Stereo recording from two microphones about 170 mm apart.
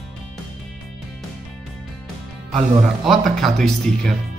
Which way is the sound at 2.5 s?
Centre (ahead or behind).